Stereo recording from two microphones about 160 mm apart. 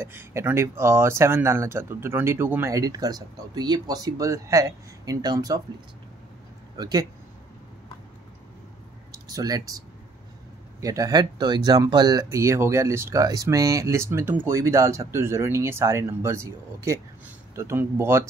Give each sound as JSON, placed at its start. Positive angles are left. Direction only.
{"t": 0.0, "sound": "speech", "side_deg": -15}
{"t": 6.8, "sound": "speech", "side_deg": -25}
{"t": 9.1, "sound": "speech", "side_deg": -25}